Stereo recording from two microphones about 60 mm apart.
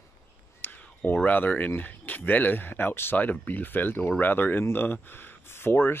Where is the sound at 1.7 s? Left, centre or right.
Left.